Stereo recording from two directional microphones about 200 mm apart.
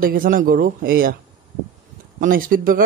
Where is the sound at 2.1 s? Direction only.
45° right (ahead or behind).